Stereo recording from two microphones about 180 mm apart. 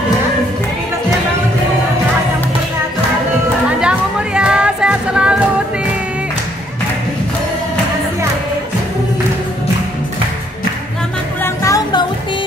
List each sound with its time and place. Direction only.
3.8 s music: 5° right (ahead or behind)
11.4 s music: 15° left (ahead or behind)